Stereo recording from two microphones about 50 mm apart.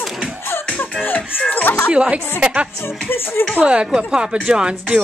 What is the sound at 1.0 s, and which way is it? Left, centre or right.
Music, left.